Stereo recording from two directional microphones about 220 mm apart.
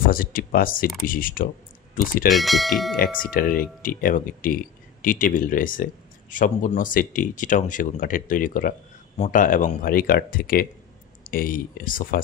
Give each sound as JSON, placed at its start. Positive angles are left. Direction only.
{"t": 0.1, "sound": "speech", "side_deg": 40}
{"t": 2.3, "sound": "speech", "side_deg": 0}
{"t": 3.3, "sound": "speech", "side_deg": 40}